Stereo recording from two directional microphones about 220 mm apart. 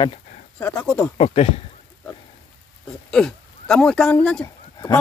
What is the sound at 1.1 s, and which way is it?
Speech, 25° left (ahead or behind).